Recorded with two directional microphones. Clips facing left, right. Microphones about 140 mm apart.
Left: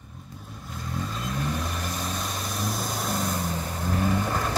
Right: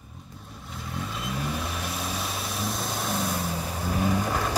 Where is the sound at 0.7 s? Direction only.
Centre (ahead or behind).